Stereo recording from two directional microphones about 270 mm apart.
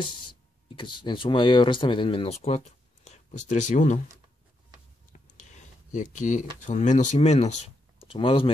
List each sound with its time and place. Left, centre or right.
0.3 s speech: centre
5.1 s a sound: left
5.9 s speech: left